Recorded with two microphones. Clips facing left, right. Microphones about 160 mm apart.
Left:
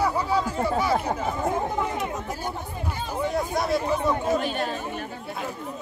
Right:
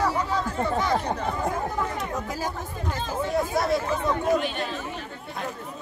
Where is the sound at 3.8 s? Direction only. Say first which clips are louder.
Left 2 dB; 15° left (ahead or behind).